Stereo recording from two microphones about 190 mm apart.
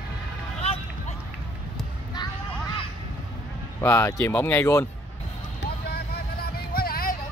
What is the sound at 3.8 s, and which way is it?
Speech, 15° left (ahead or behind).